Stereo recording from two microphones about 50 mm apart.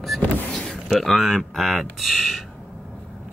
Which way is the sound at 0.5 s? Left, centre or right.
Centre.